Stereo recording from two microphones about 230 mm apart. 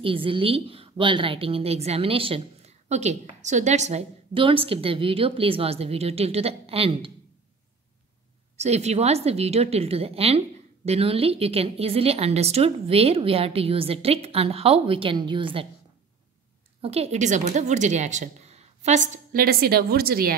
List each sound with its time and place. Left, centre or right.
0.0 s a woman's voice: right
8.5 s a woman's voice: right
16.8 s a woman's voice: right